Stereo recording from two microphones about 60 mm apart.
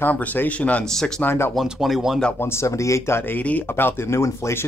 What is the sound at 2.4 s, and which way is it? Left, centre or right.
Speech, left.